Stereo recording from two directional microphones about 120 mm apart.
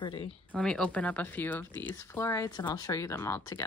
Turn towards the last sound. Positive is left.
turn(degrees=25)  # may be behind; listen again after turning